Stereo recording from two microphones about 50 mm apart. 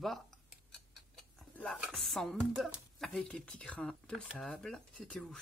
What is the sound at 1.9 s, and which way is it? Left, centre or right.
Speech, centre.